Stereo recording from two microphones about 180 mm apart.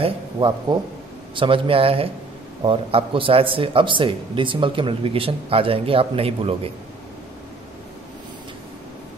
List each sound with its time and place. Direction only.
0.0 s speech: 25° right (ahead or behind)